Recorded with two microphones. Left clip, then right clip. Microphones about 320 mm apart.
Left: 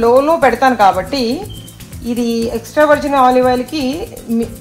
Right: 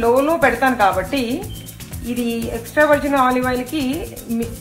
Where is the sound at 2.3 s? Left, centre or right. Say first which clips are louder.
Left 6 dB; left.